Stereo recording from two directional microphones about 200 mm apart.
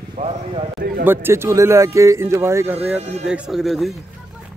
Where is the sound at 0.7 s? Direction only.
55° right (ahead or behind).